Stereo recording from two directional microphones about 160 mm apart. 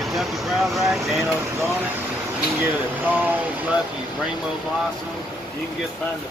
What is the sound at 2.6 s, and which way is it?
Speech, 10° right (ahead or behind).